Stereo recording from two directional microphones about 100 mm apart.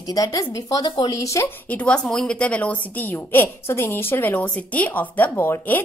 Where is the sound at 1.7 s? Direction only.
10° left (ahead or behind).